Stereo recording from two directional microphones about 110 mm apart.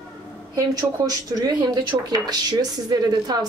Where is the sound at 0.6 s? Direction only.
35° right (ahead or behind).